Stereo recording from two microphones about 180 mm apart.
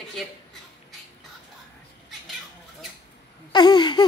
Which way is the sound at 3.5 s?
25° left (ahead or behind).